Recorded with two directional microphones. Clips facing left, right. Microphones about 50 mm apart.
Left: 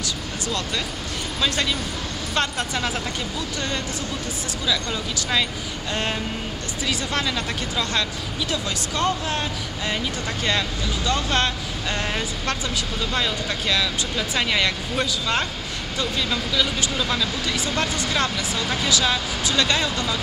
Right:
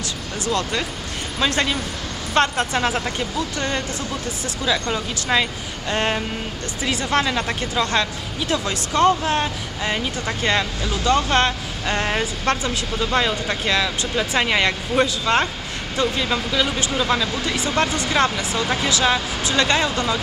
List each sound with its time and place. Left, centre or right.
0.5 s speech: right
4.8 s speech: right
7.2 s speech: right
13.1 s speech: right
17.4 s speech: right
18.6 s speech: centre
18.9 s speech: right